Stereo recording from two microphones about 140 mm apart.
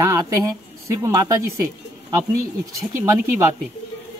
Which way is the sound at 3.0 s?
20° right (ahead or behind).